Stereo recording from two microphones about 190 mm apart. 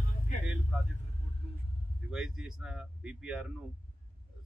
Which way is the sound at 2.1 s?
Centre (ahead or behind).